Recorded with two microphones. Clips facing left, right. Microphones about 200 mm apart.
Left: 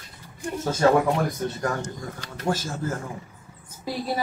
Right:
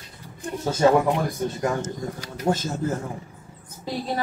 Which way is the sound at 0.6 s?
15° right (ahead or behind).